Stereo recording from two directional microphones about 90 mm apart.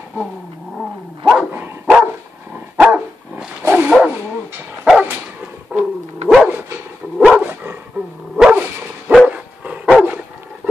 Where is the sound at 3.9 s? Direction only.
5° right (ahead or behind).